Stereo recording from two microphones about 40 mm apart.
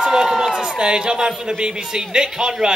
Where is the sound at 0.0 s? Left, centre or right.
Centre.